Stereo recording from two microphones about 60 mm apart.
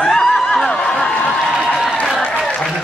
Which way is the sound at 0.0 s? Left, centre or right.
Centre.